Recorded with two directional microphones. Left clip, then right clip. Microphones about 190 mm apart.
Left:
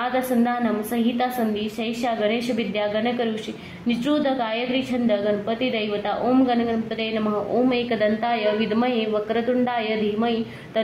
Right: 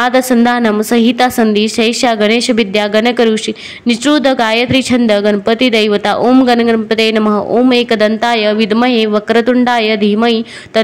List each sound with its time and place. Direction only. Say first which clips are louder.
0.0 s speech: right 12 dB; 40° right (ahead or behind)